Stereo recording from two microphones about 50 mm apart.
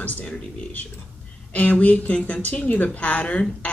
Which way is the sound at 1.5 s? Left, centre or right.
Left.